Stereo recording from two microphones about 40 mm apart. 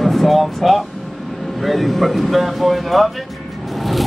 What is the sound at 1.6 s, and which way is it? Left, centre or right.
Speech, centre.